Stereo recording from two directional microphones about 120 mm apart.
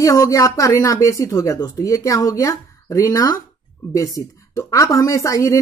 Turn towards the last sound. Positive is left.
turn(degrees=25)  # may be behind; listen again after turning